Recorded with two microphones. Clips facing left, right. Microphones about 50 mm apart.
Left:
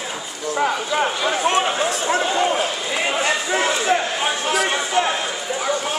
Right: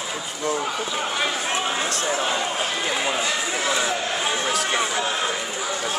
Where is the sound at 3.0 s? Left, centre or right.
Left.